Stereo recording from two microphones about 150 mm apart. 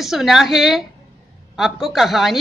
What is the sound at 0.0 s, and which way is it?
A woman's voice, centre (ahead or behind).